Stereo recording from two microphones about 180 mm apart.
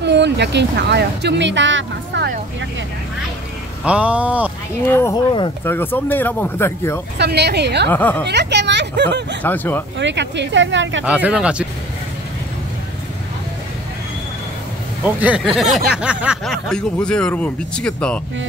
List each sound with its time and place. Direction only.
0.0 s speech: 70° right (ahead or behind)
3.8 s speech: 5° right (ahead or behind)
4.8 s speech: 15° left (ahead or behind)
7.2 s a woman's voice: 70° right (ahead or behind)
7.9 s speech: 10° left (ahead or behind)
8.3 s speech: 70° right (ahead or behind)
9.4 s speech: 10° left (ahead or behind)
9.9 s speech: 75° right (ahead or behind)
11.1 s speech: 5° right (ahead or behind)
15.1 s speech: 5° right (ahead or behind)